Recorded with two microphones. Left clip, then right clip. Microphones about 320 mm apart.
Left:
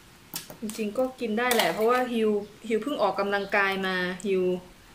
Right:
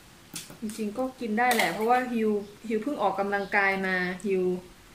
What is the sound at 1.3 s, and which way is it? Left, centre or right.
Speech, centre.